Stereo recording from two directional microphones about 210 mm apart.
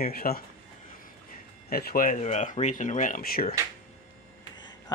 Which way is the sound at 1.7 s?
45° left (ahead or behind).